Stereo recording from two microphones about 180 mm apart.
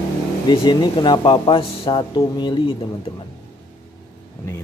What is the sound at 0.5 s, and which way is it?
Speech, 25° left (ahead or behind).